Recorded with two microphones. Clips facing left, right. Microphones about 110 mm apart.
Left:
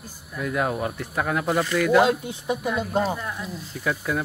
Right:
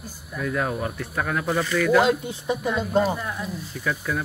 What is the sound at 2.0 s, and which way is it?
Speech, 10° left (ahead or behind).